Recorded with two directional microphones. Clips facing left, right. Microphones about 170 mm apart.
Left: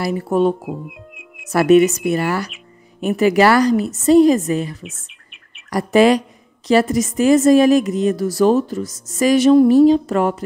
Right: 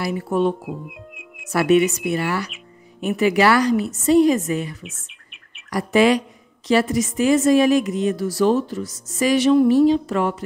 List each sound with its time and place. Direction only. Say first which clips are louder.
0.0 s a woman's voice: left 4 dB; 40° left (ahead or behind)
0.8 s music: left 1 dB; centre (ahead or behind)
1.5 s a woman's voice: left 5 dB; 45° left (ahead or behind)
4.8 s bird: left 3 dB; centre (ahead or behind)
5.7 s a woman's voice: left 3 dB; 40° left (ahead or behind)